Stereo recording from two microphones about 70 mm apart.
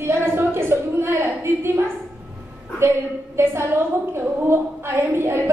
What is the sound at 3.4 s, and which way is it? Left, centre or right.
A woman's voice, right.